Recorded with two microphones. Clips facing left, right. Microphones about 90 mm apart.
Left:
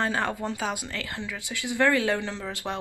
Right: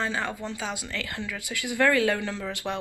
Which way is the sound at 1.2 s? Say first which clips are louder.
Right 1 dB; 25° left (ahead or behind).